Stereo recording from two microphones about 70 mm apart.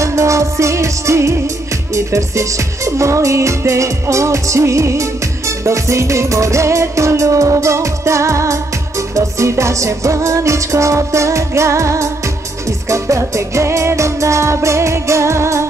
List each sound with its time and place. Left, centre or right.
0.0 s music: right